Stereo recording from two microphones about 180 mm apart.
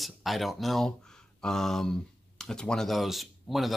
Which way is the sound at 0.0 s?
Centre (ahead or behind).